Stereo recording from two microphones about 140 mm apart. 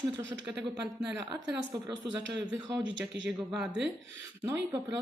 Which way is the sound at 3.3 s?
5° right (ahead or behind).